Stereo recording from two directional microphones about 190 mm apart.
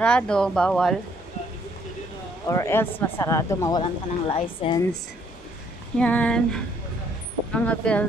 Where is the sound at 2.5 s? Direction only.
15° left (ahead or behind).